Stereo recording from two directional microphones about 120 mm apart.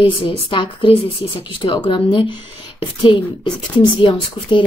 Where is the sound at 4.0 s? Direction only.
45° left (ahead or behind).